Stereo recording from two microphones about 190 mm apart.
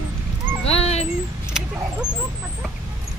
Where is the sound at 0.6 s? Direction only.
35° left (ahead or behind).